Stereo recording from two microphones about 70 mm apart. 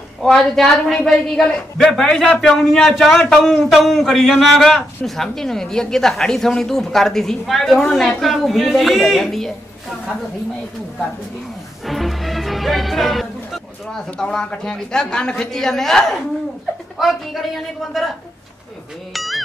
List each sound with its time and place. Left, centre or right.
0.2 s a man's voice: centre
11.8 s music: centre
14.1 s a man's voice: centre
19.1 s speech: centre